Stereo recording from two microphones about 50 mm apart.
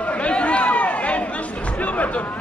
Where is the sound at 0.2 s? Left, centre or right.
Left.